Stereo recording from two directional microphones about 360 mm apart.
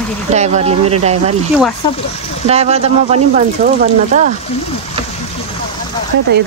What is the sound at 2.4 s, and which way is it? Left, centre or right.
Speech, centre.